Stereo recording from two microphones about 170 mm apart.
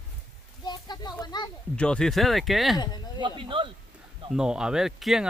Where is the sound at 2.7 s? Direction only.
25° left (ahead or behind).